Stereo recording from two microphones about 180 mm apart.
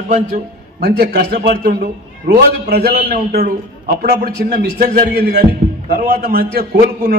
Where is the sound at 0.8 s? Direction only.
60° right (ahead or behind).